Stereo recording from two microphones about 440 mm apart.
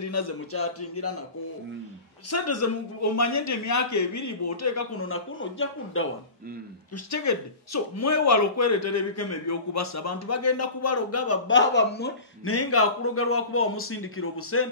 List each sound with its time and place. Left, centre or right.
0.0 s speech: left
2.3 s speech: left
7.1 s a man's voice: left